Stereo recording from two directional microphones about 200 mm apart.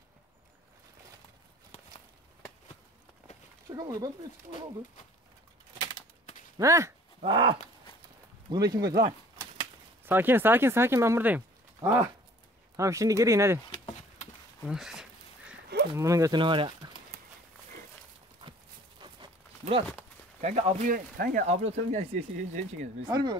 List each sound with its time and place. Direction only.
3.6 s speech: 20° right (ahead or behind)
6.6 s speech: 15° right (ahead or behind)
7.2 s speech: 25° right (ahead or behind)
8.8 s speech: 50° right (ahead or behind)
9.6 s speech: 10° right (ahead or behind)
14.6 s a sound: centre (ahead or behind)
15.9 s speech: 15° right (ahead or behind)
20.3 s speech: 35° right (ahead or behind)
23.0 s speech: 20° right (ahead or behind)